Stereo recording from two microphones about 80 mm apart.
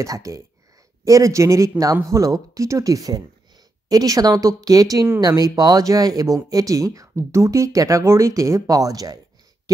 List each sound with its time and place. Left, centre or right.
0.0 s speech: right